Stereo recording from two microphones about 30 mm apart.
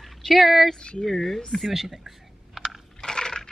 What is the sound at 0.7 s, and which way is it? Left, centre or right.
Speech, left.